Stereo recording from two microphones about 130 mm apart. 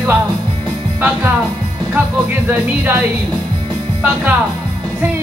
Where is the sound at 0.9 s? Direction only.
15° right (ahead or behind).